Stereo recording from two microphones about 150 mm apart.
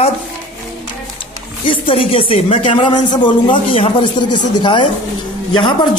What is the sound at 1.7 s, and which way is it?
A man's voice, 35° left (ahead or behind).